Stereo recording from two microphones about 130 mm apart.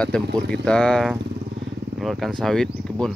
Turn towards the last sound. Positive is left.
turn(degrees=5)  # may be behind; listen again after turning